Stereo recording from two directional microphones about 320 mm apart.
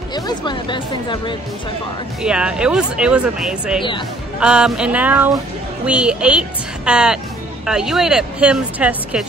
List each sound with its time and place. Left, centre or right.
0.1 s speech: centre
2.2 s a woman's voice: centre